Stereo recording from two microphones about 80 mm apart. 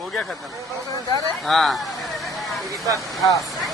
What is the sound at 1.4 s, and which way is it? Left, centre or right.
Speech, centre.